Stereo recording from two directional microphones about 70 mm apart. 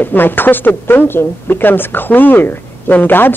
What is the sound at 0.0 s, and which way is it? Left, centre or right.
Speech, left.